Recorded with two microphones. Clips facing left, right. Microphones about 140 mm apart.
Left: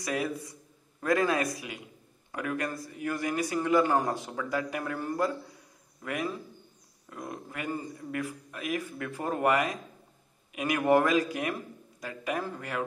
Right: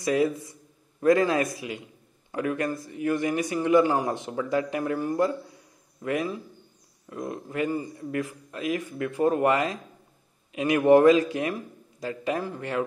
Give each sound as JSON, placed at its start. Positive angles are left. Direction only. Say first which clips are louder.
{"t": 0.0, "sound": "a man's voice", "louder": "right 8 dB", "side_deg": -25}
{"t": 7.1, "sound": "a man's voice", "louder": "right 6 dB", "side_deg": -25}